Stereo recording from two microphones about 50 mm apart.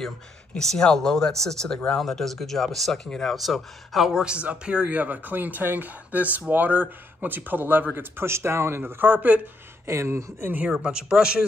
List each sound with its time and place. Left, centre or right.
0.6 s speech: centre
3.3 s speech: centre
4.1 s speech: centre
4.9 s speech: right
8.3 s speech: right
9.0 s speech: right
9.8 s speech: right
10.8 s speech: centre